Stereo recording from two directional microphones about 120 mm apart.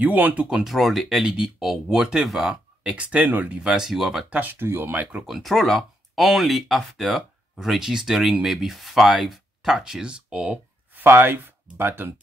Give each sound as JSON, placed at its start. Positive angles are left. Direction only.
{"t": 0.0, "sound": "speech", "side_deg": -15}
{"t": 4.4, "sound": "speech", "side_deg": -15}
{"t": 5.2, "sound": "speech", "side_deg": 0}